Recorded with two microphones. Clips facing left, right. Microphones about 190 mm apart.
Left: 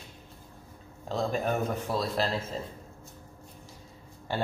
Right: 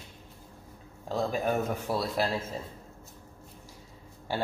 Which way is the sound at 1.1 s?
10° right (ahead or behind).